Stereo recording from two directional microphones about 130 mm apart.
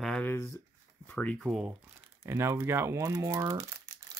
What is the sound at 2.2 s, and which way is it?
Speech, 20° right (ahead or behind).